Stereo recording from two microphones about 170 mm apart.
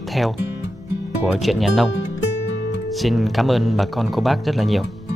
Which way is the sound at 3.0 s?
Centre (ahead or behind).